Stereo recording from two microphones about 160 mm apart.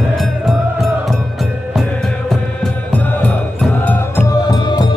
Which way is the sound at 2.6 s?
10° left (ahead or behind).